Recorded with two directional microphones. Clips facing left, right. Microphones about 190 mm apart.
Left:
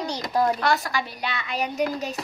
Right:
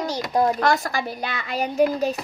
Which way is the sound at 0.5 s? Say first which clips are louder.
Right 3 dB; 45° right (ahead or behind).